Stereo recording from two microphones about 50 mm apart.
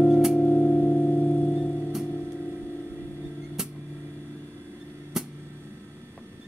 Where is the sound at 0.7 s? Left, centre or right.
Left.